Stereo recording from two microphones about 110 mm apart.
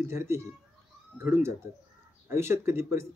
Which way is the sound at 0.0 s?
25° right (ahead or behind).